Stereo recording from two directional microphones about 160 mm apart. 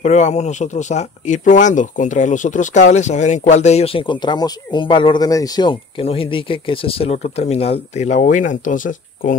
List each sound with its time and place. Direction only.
0.0 s speech: 45° left (ahead or behind)